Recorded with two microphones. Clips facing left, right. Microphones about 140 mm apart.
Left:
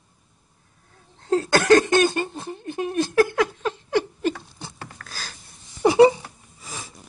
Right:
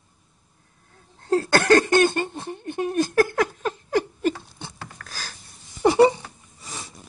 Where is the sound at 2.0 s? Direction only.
Centre (ahead or behind).